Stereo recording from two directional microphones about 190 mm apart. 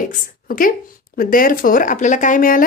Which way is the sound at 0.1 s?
45° left (ahead or behind).